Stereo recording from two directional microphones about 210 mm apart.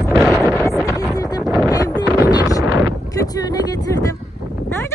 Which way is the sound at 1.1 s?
15° left (ahead or behind).